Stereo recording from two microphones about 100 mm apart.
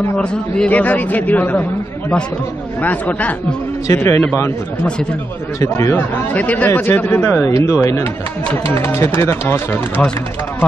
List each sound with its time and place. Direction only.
0.2 s speech: 10° left (ahead or behind)
3.8 s speech: 25° left (ahead or behind)
5.6 s speech: 30° left (ahead or behind)